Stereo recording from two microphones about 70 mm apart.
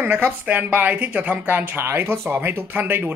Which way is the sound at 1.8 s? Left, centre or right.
Right.